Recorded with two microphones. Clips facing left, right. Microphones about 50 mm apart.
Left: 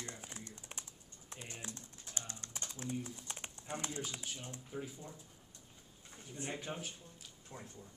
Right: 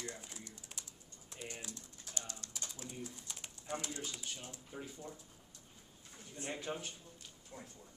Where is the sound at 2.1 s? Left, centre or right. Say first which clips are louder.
Left 1 dB; left.